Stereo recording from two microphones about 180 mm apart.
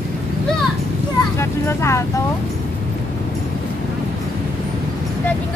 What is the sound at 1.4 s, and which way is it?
Speech, 15° left (ahead or behind).